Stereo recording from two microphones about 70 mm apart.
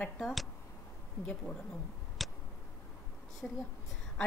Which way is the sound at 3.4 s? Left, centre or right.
Centre.